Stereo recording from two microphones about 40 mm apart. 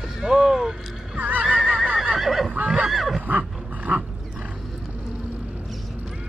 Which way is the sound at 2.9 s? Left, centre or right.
Centre.